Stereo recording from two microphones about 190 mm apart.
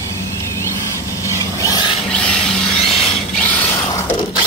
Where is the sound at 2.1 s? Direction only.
5° left (ahead or behind).